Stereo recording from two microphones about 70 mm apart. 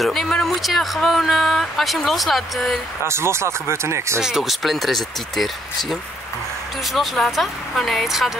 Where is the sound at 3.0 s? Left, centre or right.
Right.